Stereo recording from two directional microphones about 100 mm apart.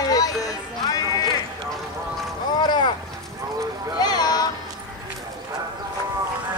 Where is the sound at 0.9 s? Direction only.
40° left (ahead or behind).